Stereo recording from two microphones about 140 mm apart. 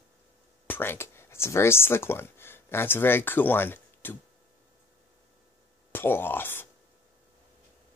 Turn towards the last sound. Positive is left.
turn(degrees=15)  # may be behind; listen again after turning